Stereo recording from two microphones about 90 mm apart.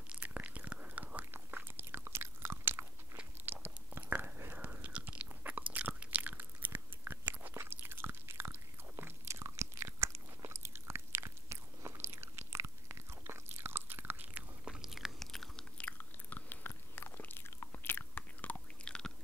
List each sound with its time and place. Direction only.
0.1 s biting: 15° right (ahead or behind); by 15.6 s 5° left (ahead or behind)
15.8 s biting: 20° left (ahead or behind)